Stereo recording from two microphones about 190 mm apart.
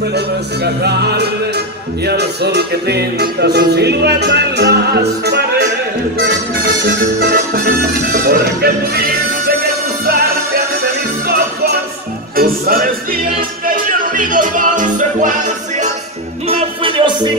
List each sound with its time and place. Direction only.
0.8 s music: 60° right (ahead or behind)
7.2 s speech: 55° right (ahead or behind)
11.2 s music: 55° right (ahead or behind)
16.4 s music: 30° right (ahead or behind)